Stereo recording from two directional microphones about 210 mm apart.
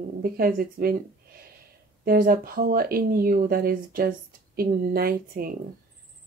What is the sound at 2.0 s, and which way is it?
A woman's voice, 40° right (ahead or behind).